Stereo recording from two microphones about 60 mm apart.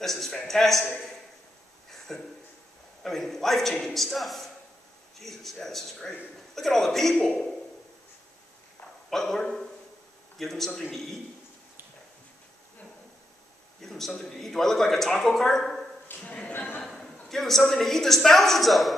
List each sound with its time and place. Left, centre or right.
0.0 s a man's voice: centre
1.9 s a sound: centre
3.0 s a man's voice: centre
9.1 s a man's voice: centre
13.7 s a man's voice: centre
16.2 s speech: centre
16.5 s a sound: left
16.8 s a sound: centre
17.3 s a man's voice: centre